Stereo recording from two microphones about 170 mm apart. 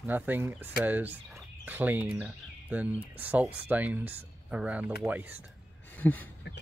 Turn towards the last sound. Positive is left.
turn(degrees=10)  # may be behind; listen again after turning